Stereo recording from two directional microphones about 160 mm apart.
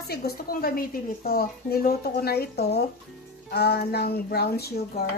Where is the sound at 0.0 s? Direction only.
75° left (ahead or behind).